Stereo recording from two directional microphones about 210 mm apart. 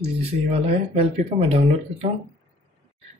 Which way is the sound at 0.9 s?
25° right (ahead or behind).